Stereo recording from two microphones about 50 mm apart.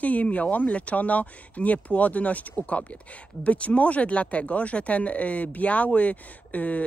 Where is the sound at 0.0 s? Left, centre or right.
Left.